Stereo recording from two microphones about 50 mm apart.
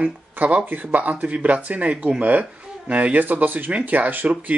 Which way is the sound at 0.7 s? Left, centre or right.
Right.